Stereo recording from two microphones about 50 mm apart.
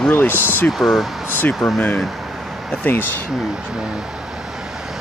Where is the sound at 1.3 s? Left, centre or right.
Left.